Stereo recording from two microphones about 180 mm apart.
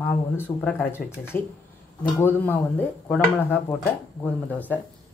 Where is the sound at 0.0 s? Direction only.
10° left (ahead or behind).